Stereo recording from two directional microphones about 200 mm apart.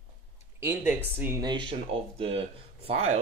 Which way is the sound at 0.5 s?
10° right (ahead or behind).